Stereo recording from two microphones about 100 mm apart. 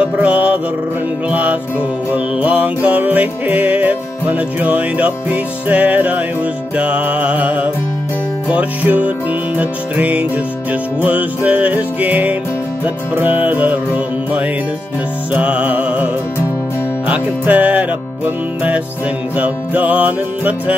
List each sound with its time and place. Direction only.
0.0 s mantra: 15° right (ahead or behind)
1.3 s music: 15° right (ahead or behind)
17.1 s music: 15° right (ahead or behind)